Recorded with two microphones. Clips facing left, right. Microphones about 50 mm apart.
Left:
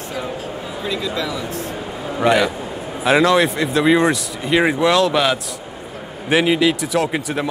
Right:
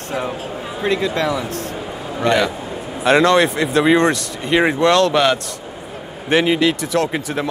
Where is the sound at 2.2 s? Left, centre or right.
Centre.